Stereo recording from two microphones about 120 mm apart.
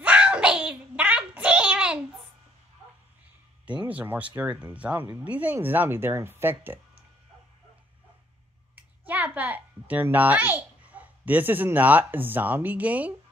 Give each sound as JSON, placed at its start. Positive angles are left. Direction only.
{"t": 0.0, "sound": "child singing", "side_deg": -10}
{"t": 3.8, "sound": "speech", "side_deg": -15}
{"t": 8.7, "sound": "a child's voice", "side_deg": -15}